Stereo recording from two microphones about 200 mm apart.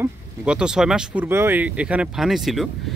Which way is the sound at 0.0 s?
5° right (ahead or behind).